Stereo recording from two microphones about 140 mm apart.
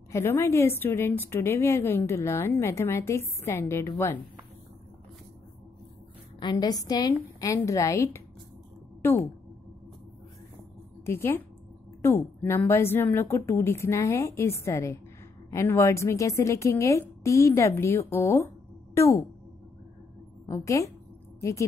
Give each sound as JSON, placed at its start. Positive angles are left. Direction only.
{"t": 0.1, "sound": "a woman's voice", "side_deg": 15}
{"t": 6.4, "sound": "a woman's voice", "side_deg": 30}
{"t": 11.1, "sound": "a woman's voice", "side_deg": 15}
{"t": 20.4, "sound": "a woman's voice", "side_deg": 20}